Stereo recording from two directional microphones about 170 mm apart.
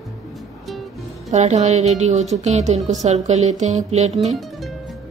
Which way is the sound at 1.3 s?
40° right (ahead or behind).